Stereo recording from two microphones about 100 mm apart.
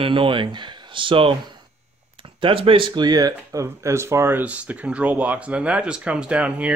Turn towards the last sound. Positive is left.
turn(degrees=-10)  # may be behind; listen again after turning